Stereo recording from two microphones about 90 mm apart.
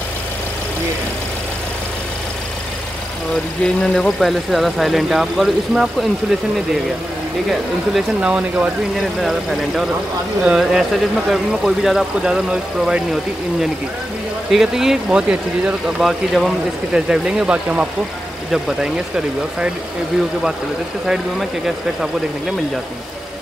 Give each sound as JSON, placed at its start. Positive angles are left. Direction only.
{"t": 3.6, "sound": "speech", "side_deg": 5}
{"t": 8.2, "sound": "speech", "side_deg": -15}
{"t": 8.9, "sound": "speech", "side_deg": 0}
{"t": 21.1, "sound": "speech", "side_deg": -5}